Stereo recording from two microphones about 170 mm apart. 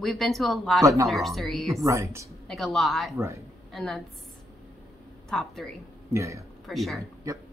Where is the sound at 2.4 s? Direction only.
Centre (ahead or behind).